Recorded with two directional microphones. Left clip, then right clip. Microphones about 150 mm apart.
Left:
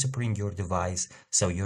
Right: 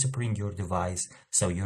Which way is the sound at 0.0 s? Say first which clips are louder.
Left 1 dB; 35° left (ahead or behind).